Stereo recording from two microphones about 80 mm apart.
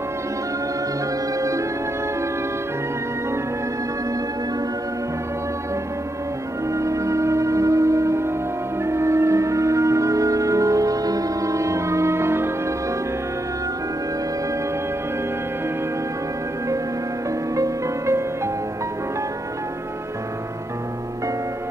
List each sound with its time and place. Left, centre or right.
1.4 s music: right
6.7 s music: right
17.6 s music: right